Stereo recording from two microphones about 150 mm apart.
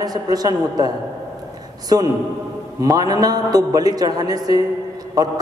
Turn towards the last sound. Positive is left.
turn(degrees=-25)  # may be behind; listen again after turning